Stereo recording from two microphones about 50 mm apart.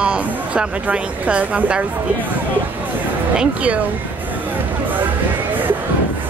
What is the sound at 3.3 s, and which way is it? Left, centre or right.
Speech, right.